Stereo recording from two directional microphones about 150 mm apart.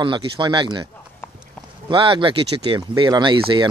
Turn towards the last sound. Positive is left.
turn(degrees=-30)  # may be behind; listen again after turning